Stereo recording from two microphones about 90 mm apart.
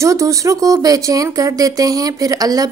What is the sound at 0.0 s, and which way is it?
A woman's voice, 35° right (ahead or behind).